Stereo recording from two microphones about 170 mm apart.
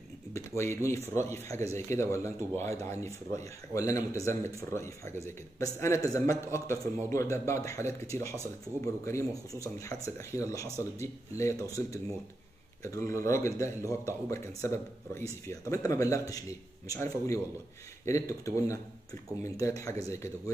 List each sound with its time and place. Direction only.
0.3 s speech: 15° left (ahead or behind)
18.0 s speech: 20° left (ahead or behind)